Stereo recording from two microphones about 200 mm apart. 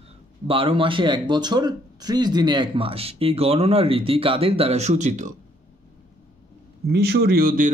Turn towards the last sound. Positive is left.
turn(degrees=-50)  # may be behind; listen again after turning